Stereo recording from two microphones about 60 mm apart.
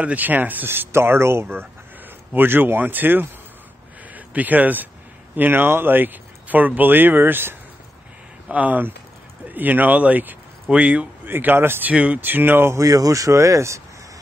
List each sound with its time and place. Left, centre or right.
0.0 s speech: right
8.5 s speech: right
11.2 s speech: right
11.9 s speech: right
12.2 s speech: right
12.7 s speech: right